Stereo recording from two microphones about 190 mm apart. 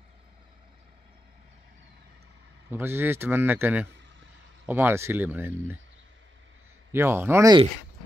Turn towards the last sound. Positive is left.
turn(degrees=-15)  # may be behind; listen again after turning